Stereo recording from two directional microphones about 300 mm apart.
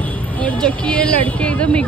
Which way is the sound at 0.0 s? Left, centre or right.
Centre.